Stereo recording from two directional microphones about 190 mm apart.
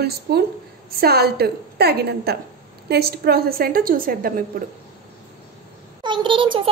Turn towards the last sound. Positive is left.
turn(degrees=-25)  # may be behind; listen again after turning